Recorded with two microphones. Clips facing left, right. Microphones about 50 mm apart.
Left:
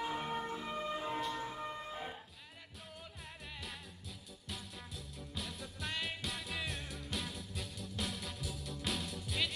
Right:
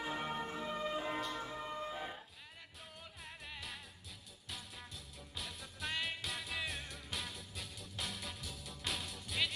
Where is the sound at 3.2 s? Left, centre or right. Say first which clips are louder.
Right 1 dB; centre.